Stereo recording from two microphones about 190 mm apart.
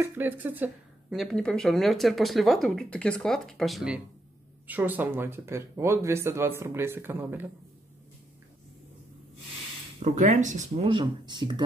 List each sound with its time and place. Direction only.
0.0 s speech: 10° right (ahead or behind)
1.1 s speech: centre (ahead or behind)
10.0 s speech: 40° right (ahead or behind)
10.9 s speech: 25° right (ahead or behind)